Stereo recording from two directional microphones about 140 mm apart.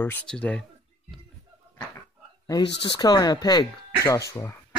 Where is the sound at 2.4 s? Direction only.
30° left (ahead or behind).